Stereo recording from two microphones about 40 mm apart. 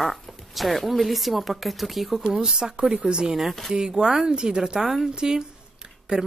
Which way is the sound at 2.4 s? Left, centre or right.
Centre.